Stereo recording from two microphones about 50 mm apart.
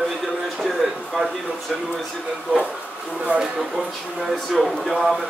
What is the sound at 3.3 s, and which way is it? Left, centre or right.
Speech, right.